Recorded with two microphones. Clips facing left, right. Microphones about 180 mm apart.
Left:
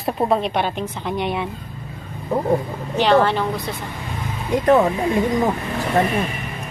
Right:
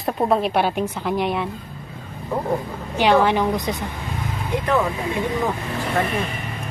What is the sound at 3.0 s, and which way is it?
Speech, 10° right (ahead or behind).